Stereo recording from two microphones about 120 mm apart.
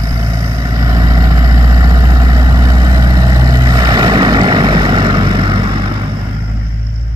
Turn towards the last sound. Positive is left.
turn(degrees=-45)  # may be behind; listen again after turning